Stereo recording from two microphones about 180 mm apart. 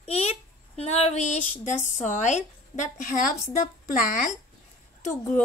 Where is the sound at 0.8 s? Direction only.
35° left (ahead or behind).